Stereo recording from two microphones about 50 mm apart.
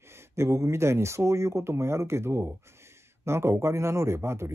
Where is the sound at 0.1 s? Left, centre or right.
Right.